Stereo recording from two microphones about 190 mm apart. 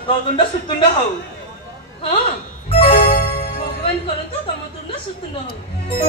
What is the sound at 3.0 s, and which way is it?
Music, 55° left (ahead or behind).